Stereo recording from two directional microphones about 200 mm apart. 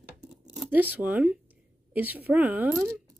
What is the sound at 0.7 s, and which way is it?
A woman's voice, 10° right (ahead or behind).